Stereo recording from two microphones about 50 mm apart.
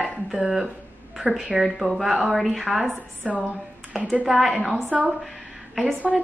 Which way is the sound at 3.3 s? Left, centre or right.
Left.